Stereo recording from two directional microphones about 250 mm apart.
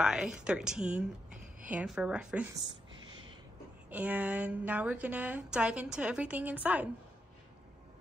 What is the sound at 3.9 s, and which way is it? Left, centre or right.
A woman's voice, centre.